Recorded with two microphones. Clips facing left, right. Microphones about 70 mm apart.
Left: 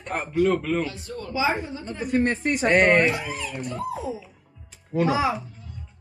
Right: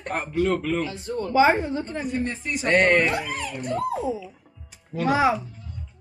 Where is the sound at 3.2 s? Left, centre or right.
Right.